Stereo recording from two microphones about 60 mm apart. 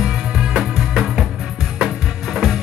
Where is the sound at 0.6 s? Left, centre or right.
Centre.